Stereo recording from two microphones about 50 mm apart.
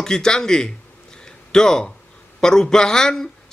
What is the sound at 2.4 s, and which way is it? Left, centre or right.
Speech, centre.